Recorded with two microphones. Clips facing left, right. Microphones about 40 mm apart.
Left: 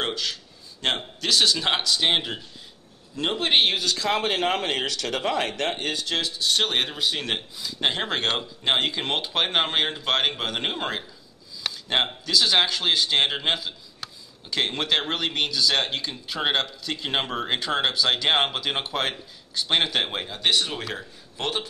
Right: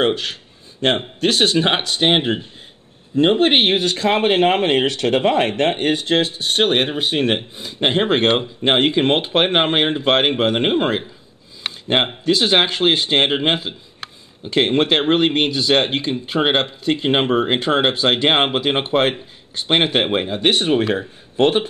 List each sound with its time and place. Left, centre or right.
0.0 s speech: right